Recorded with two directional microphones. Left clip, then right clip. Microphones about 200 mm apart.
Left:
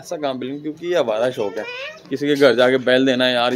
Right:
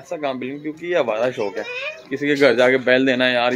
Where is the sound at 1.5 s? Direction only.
45° left (ahead or behind).